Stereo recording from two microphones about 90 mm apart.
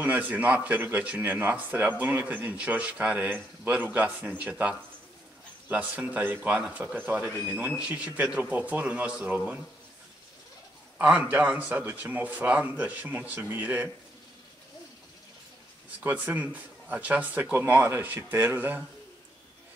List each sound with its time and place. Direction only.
0.0 s a man's voice: 20° right (ahead or behind)
11.0 s a man's voice: 15° right (ahead or behind)
16.0 s a man's voice: 20° right (ahead or behind)